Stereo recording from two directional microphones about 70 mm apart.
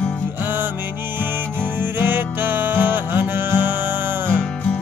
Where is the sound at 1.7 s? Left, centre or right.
Right.